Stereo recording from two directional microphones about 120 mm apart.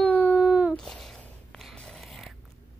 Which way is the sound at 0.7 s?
5° left (ahead or behind).